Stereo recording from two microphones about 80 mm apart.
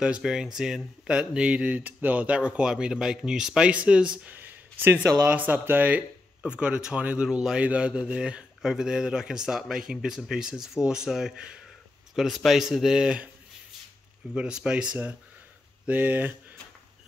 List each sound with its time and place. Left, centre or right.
0.0 s a man's voice: centre
14.3 s speech: centre